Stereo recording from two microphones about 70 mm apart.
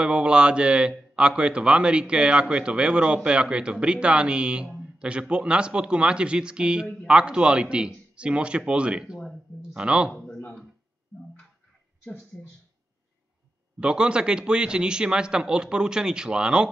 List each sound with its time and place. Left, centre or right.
0.0 s speech: centre
10.2 s a sound: centre
13.7 s speech: centre